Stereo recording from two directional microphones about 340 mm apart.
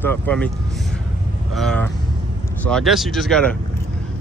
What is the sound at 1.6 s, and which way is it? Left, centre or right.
Speech, centre.